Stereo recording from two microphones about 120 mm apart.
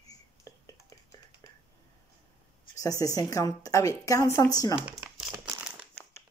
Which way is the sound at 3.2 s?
30° left (ahead or behind).